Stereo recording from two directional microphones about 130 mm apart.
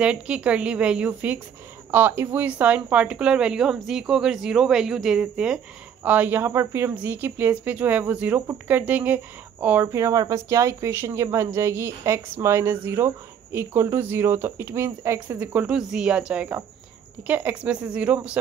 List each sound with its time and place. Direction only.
0.0 s speech: 10° right (ahead or behind)
9.9 s speech: 25° right (ahead or behind); by 18.4 s 10° right (ahead or behind)